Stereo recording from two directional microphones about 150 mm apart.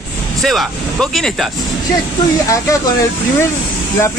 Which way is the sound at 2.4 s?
20° left (ahead or behind).